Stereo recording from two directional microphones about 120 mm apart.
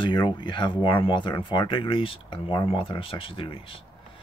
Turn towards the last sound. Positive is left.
turn(degrees=50)  # may be behind; listen again after turning